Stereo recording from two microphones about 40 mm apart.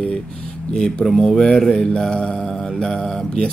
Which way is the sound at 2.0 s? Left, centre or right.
Centre.